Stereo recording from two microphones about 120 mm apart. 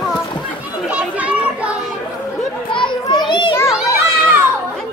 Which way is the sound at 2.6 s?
45° left (ahead or behind).